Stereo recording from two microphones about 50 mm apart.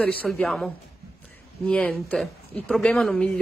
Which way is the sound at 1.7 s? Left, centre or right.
Left.